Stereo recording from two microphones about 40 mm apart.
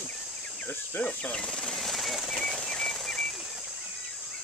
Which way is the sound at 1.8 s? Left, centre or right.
Centre.